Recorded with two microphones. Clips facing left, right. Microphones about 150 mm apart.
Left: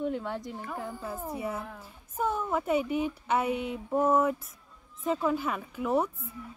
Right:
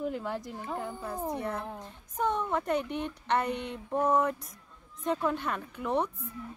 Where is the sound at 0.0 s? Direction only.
Centre (ahead or behind).